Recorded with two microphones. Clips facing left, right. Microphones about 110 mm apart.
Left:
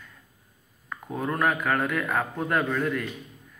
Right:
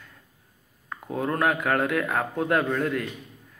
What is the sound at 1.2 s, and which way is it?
Speech, 25° right (ahead or behind).